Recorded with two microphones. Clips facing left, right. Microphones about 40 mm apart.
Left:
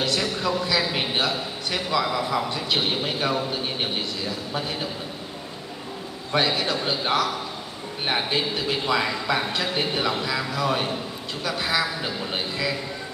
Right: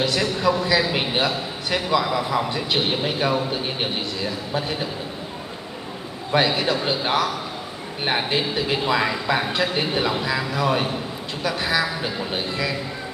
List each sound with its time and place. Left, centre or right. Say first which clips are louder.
0.0 s a sound: right 4 dB; centre
2.8 s a man's voice: right 3 dB; centre
6.3 s a man's voice: right 3 dB; centre